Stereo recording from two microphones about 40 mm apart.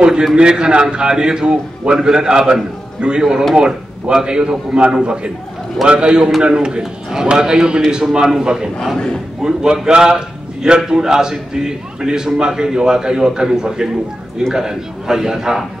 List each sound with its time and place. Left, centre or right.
0.4 s a man's voice: right
6.8 s a man's voice: centre
8.9 s a man's voice: centre
9.4 s a man's voice: centre